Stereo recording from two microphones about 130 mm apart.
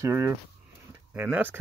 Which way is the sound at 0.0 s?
25° right (ahead or behind).